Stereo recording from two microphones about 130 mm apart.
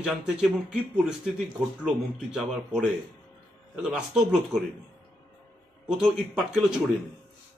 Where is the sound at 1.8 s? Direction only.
5° right (ahead or behind).